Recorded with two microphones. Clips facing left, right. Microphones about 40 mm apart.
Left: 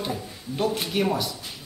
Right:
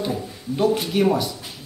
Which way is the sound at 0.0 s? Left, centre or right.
Centre.